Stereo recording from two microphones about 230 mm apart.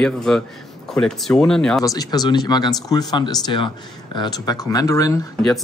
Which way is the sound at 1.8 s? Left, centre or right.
Centre.